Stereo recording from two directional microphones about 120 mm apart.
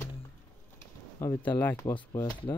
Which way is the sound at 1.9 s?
35° left (ahead or behind).